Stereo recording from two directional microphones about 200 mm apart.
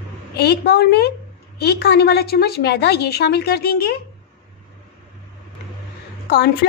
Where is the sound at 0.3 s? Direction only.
55° left (ahead or behind).